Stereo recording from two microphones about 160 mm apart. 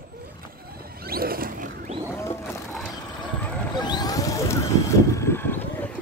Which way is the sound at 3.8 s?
25° left (ahead or behind).